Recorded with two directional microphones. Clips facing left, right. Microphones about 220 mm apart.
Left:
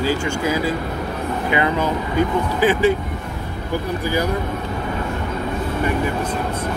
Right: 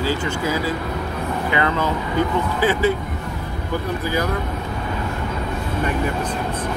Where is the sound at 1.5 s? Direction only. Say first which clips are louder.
Left 2 dB; 15° left (ahead or behind).